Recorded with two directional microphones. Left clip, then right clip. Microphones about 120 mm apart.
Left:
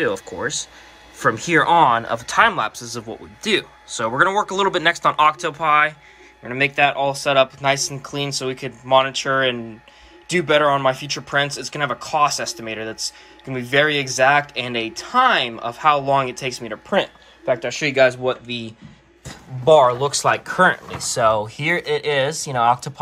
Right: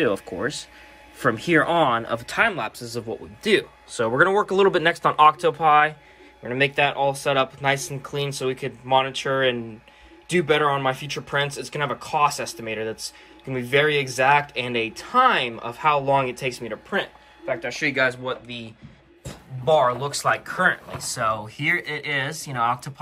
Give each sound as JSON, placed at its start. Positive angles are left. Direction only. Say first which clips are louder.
{"t": 0.4, "sound": "speech", "louder": "left 3 dB", "side_deg": 5}
{"t": 16.9, "sound": "speech", "louder": "left 7 dB", "side_deg": 35}